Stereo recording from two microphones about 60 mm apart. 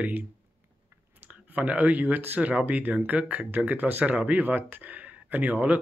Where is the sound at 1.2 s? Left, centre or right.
Right.